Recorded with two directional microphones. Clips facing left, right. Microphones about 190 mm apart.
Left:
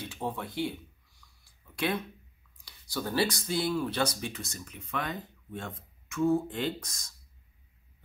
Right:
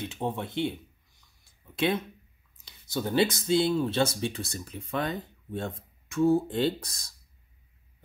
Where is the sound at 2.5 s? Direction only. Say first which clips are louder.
Right 4 dB; 20° right (ahead or behind).